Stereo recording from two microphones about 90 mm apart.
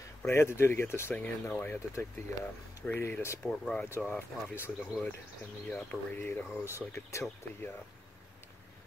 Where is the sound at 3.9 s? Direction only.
20° left (ahead or behind).